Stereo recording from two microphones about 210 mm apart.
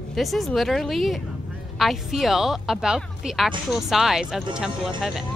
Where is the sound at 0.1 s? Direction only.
Centre (ahead or behind).